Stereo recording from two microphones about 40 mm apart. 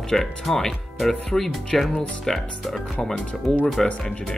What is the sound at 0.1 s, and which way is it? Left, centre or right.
Speech, centre.